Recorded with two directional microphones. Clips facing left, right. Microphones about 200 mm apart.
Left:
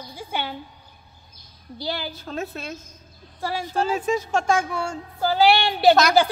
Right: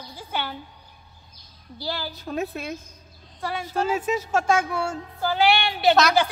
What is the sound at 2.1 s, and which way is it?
Speech, 15° right (ahead or behind).